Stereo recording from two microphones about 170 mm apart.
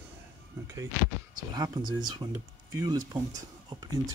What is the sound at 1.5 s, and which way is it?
Speech, 25° right (ahead or behind).